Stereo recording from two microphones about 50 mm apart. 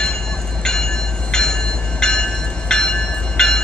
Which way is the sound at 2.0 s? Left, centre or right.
Centre.